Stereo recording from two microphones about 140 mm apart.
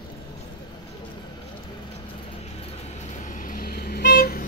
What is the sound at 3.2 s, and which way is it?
Vehicle, 65° left (ahead or behind).